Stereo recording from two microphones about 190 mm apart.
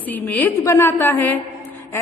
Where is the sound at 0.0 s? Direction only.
10° left (ahead or behind).